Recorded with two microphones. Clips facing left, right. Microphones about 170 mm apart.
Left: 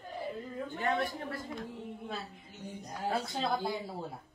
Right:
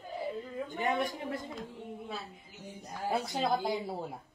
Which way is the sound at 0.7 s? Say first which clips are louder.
Even; 15° right (ahead or behind).